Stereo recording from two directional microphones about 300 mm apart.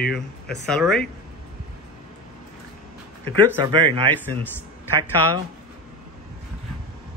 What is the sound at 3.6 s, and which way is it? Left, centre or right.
Speech, centre.